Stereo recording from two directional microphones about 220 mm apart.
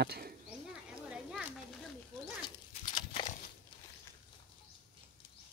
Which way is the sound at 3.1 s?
30° left (ahead or behind).